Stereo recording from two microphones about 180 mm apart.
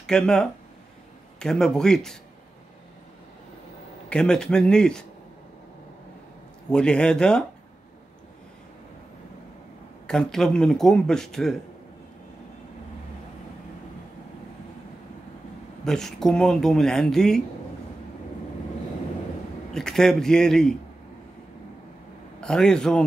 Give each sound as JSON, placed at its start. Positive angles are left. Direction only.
{"t": 0.0, "sound": "speech", "side_deg": 5}
{"t": 4.1, "sound": "speech", "side_deg": 5}
{"t": 6.7, "sound": "speech", "side_deg": 5}
{"t": 10.0, "sound": "speech", "side_deg": 5}
{"t": 15.8, "sound": "speech", "side_deg": 5}
{"t": 19.7, "sound": "a man's voice", "side_deg": 5}
{"t": 22.4, "sound": "speech", "side_deg": 5}